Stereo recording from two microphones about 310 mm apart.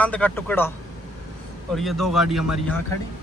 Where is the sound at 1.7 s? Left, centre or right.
Centre.